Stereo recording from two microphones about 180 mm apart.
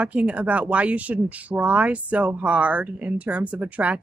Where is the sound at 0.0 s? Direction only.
5° right (ahead or behind).